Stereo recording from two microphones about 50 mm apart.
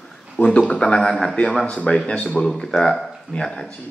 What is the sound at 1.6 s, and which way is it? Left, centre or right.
Speech, left.